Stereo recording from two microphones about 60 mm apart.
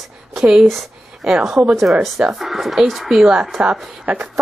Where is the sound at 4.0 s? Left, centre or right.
Right.